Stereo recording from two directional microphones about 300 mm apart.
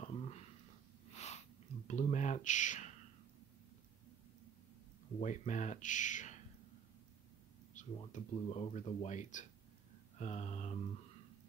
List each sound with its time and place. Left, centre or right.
0.0 s a sound: left
1.9 s speech: left
5.2 s speech: left
7.7 s speech: left